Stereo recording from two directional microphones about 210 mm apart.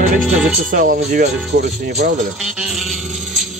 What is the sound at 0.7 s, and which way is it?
Speech, 40° right (ahead or behind).